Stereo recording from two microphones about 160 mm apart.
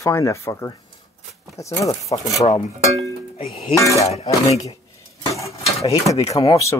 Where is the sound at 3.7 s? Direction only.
20° left (ahead or behind).